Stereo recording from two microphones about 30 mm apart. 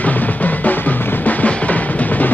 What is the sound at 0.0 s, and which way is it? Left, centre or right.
Drum, left.